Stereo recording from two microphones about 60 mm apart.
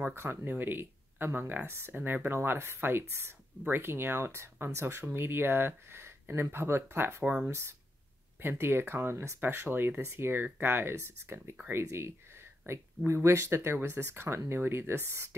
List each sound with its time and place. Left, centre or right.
0.1 s speech: right
9.4 s speech: right